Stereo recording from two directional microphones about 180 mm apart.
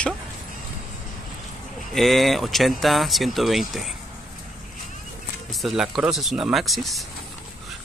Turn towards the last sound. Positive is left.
turn(degrees=0)  # may be behind; listen again after turning